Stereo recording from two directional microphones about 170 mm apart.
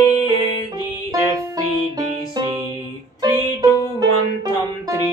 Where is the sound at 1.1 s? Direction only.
20° right (ahead or behind).